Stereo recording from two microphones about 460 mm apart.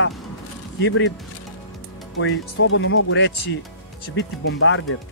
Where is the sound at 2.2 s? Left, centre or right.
Left.